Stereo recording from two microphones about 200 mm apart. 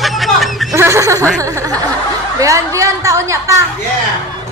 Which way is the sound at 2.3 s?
15° right (ahead or behind).